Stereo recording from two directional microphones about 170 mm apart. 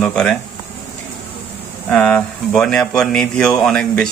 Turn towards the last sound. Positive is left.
turn(degrees=5)  # may be behind; listen again after turning